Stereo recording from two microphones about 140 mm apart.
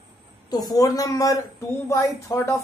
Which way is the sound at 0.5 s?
25° left (ahead or behind).